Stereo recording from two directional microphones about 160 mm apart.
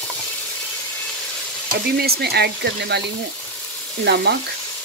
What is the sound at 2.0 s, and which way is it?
Speech, 80° right.